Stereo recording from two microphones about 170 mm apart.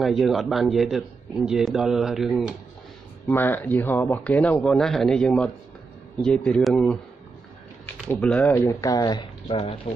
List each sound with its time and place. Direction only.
0.0 s a man's voice: centre (ahead or behind)
3.3 s a man's voice: 10° left (ahead or behind)
8.1 s a man's voice: 10° left (ahead or behind)
8.5 s speech: 20° left (ahead or behind)